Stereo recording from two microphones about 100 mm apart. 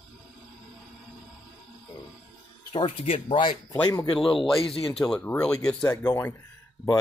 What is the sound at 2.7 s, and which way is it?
Speech, 60° left (ahead or behind).